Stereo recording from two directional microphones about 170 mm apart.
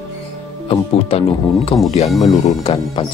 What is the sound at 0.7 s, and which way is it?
Speech, 35° left (ahead or behind).